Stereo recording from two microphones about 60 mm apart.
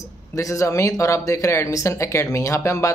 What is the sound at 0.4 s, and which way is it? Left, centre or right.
Speech, left.